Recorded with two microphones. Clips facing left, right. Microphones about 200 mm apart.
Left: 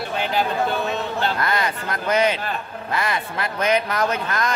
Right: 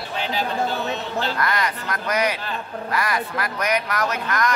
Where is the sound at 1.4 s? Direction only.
25° left (ahead or behind).